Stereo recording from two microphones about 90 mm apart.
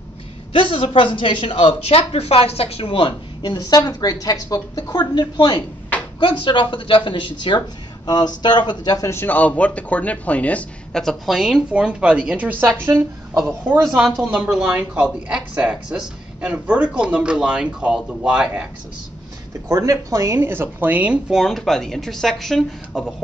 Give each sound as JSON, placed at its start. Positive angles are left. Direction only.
{"t": 0.5, "sound": "speech", "side_deg": 70}
{"t": 3.4, "sound": "a woman's voice", "side_deg": 50}
{"t": 6.1, "sound": "speech", "side_deg": 65}
{"t": 8.9, "sound": "speech", "side_deg": 30}
{"t": 11.0, "sound": "speech", "side_deg": 0}
{"t": 11.7, "sound": "speech", "side_deg": -10}
{"t": 12.8, "sound": "a woman's voice", "side_deg": -35}
{"t": 14.2, "sound": "speech", "side_deg": -10}
{"t": 19.7, "sound": "a woman's voice", "side_deg": -35}
{"t": 20.3, "sound": "speech", "side_deg": -25}
{"t": 21.3, "sound": "speech", "side_deg": 0}